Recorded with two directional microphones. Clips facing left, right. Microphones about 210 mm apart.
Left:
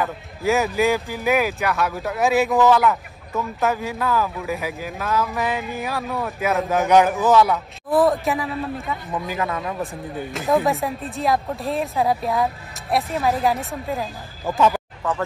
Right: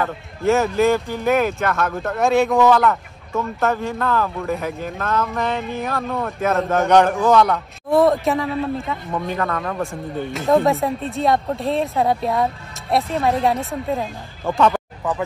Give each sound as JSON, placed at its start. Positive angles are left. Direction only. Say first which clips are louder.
{"t": 0.0, "sound": "speech", "louder": "right 3 dB", "side_deg": 0}
{"t": 15.0, "sound": "speech", "louder": "right 1 dB", "side_deg": -15}